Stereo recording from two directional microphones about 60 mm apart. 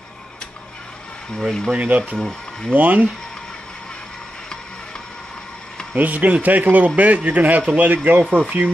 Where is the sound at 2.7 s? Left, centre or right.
Right.